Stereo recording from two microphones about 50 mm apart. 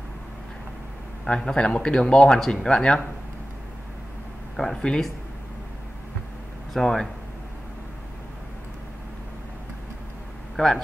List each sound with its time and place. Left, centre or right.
1.2 s speech: centre
4.9 s speech: left
6.7 s speech: centre
10.5 s a sound: centre